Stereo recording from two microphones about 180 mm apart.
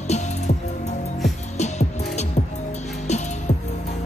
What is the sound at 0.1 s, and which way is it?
Music, 40° left (ahead or behind).